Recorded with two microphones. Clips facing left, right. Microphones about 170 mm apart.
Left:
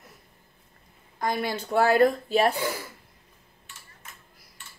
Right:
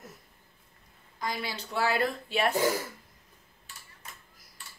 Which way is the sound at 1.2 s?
50° left (ahead or behind).